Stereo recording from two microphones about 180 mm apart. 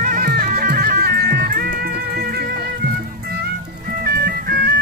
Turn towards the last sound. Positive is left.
turn(degrees=-60)  # may be behind; listen again after turning